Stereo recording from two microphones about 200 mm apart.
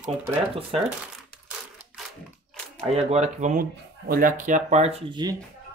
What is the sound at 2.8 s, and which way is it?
Speech, 35° right (ahead or behind).